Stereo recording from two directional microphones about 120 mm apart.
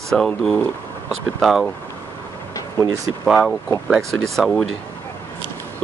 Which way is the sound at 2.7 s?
30° right (ahead or behind).